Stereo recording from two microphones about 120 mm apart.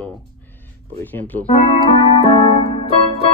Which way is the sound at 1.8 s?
50° left (ahead or behind).